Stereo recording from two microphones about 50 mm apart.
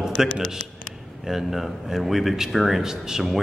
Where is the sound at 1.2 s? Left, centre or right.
Centre.